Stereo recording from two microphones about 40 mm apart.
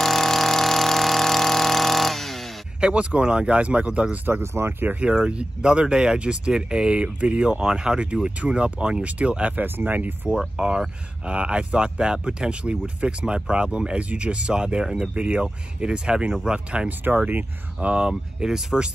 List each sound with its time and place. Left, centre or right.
0.0 s vehicle: centre
2.8 s speech: right
4.3 s speech: right
5.1 s speech: right
9.8 s speech: right
10.6 s speech: right
17.2 s speech: right
17.7 s speech: right